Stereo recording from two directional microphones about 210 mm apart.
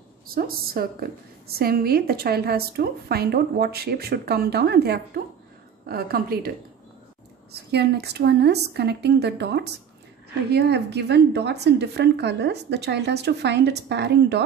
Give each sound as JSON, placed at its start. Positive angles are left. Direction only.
{"t": 0.3, "sound": "a woman's voice", "side_deg": -45}
{"t": 7.7, "sound": "a woman's voice", "side_deg": -50}